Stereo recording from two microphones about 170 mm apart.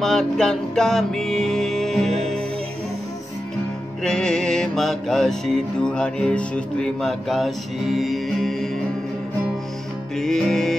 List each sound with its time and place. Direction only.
0.0 s music: 5° left (ahead or behind)
4.0 s music: 5° left (ahead or behind)
10.1 s music: centre (ahead or behind)